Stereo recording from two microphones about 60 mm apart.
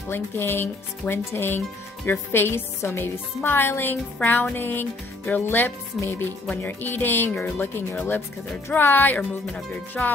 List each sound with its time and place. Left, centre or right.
0.1 s speech: left
6.0 s music: centre
6.5 s speech: left
9.7 s music: left